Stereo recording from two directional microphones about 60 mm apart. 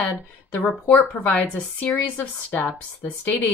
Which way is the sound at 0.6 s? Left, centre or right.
Left.